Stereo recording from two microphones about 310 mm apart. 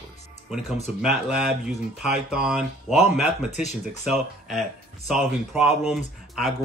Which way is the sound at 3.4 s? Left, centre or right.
Left.